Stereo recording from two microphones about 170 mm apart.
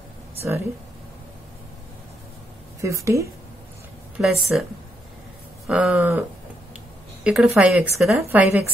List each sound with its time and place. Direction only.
2.8 s a woman's voice: 20° right (ahead or behind)
4.2 s speech: centre (ahead or behind)
5.7 s a woman's voice: 5° right (ahead or behind)
7.2 s a woman's voice: 5° right (ahead or behind)